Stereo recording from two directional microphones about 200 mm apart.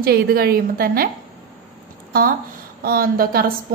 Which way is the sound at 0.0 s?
50° right (ahead or behind).